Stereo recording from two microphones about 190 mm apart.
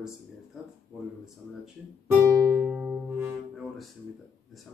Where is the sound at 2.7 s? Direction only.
5° right (ahead or behind).